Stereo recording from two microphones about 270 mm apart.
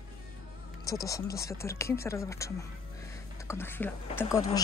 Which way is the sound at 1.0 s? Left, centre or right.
Centre.